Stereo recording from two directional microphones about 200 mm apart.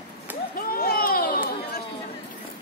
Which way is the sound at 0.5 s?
50° left (ahead or behind).